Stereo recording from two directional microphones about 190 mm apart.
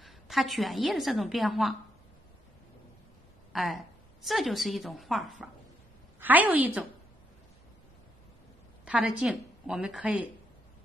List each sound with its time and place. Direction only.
0.0 s a woman's voice: centre (ahead or behind)
3.5 s a woman's voice: centre (ahead or behind)
8.8 s a woman's voice: centre (ahead or behind)